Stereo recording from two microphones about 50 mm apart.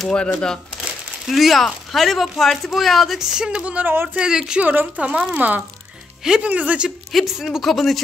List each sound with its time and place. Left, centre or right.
0.1 s speech: centre
1.2 s speech: centre
3.2 s speech: centre
3.6 s speech: right
4.2 s speech: centre
4.6 s speech: right
4.9 s speech: right
7.1 s speech: centre
7.6 s speech: centre